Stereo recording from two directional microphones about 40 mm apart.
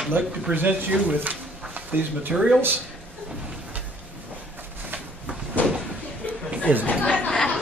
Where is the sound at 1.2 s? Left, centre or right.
Right.